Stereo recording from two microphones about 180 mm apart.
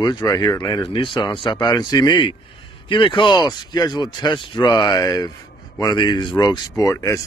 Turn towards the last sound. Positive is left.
turn(degrees=20)  # may be behind; listen again after turning